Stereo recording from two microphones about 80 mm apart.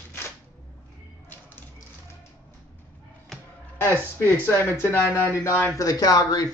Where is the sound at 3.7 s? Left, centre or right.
Left.